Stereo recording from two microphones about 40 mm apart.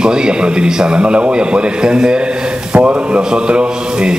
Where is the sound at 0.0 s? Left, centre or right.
Centre.